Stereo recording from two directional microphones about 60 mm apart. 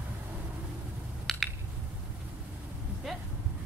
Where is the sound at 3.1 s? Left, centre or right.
Centre.